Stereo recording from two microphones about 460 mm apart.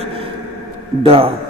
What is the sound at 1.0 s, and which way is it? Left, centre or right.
Speech, centre.